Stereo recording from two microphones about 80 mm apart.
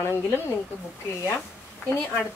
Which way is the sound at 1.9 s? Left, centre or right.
Left.